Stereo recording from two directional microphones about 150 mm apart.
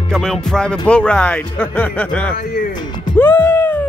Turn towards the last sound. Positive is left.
turn(degrees=15)  # may be behind; listen again after turning